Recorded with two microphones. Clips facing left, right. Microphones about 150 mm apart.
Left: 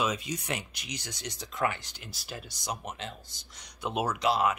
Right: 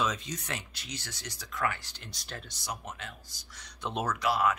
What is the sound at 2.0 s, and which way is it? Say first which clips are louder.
Speech: left 2 dB; 5° left (ahead or behind).